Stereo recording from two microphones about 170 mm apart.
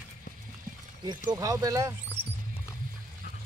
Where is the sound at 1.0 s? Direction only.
25° right (ahead or behind).